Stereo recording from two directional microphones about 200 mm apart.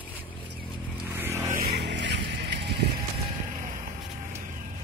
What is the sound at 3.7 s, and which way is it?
Vehicle, 40° right (ahead or behind).